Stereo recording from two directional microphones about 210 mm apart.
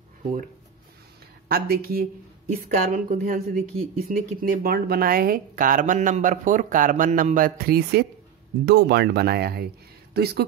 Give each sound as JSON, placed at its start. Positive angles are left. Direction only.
{"t": 1.5, "sound": "a woman's voice", "side_deg": -45}